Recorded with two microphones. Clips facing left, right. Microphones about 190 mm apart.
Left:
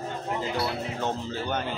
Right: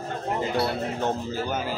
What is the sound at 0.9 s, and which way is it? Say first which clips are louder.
Speech: right 3 dB; 10° right (ahead or behind).